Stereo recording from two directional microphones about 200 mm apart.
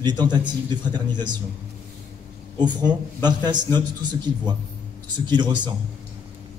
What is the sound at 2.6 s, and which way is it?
A man's voice, 20° right (ahead or behind).